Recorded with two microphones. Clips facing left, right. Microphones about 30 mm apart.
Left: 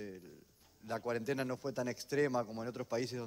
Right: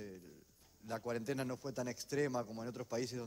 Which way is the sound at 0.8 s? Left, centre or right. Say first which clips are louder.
Left 3 dB; centre.